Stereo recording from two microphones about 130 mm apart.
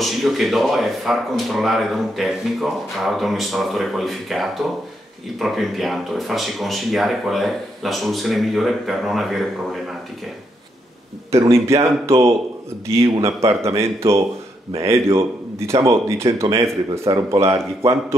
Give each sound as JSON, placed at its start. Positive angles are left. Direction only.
{"t": 0.0, "sound": "speech", "side_deg": 0}
{"t": 11.3, "sound": "speech", "side_deg": -20}